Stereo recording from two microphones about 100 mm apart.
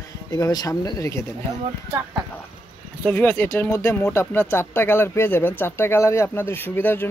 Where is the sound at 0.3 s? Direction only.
40° left (ahead or behind).